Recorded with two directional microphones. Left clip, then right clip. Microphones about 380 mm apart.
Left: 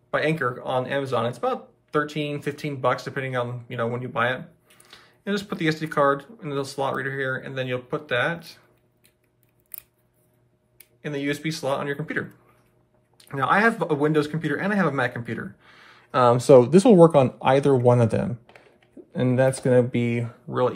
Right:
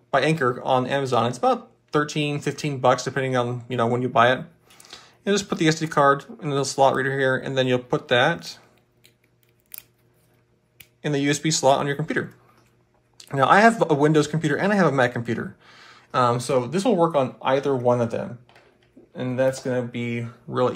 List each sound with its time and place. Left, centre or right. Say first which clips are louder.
0.1 s speech: right 3 dB; centre
11.0 s speech: right 4 dB; centre